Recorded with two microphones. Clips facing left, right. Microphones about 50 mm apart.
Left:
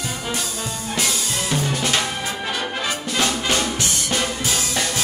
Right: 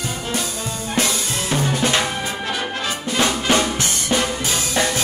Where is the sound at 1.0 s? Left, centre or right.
Right.